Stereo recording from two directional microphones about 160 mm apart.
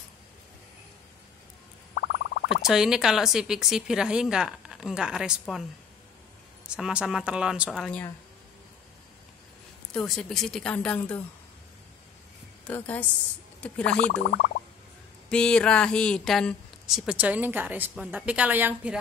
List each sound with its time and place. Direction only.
2.0 s a sound: 80° left
2.6 s speech: 5° right (ahead or behind)
6.7 s speech: 5° right (ahead or behind)
7.8 s speech: 5° left (ahead or behind)
9.9 s speech: centre (ahead or behind)
12.6 s speech: 10° left (ahead or behind)
15.2 s speech: 5° left (ahead or behind); by 18.9 s 10° right (ahead or behind)